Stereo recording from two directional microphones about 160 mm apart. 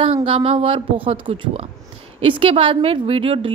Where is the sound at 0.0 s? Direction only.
35° right (ahead or behind).